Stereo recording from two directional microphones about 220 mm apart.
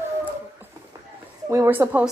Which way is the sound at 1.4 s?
10° right (ahead or behind).